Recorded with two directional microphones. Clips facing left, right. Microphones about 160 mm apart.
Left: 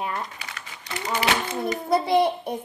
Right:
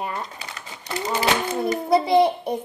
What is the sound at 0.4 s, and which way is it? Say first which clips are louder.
Typewriter: right 2 dB; 30° right (ahead or behind).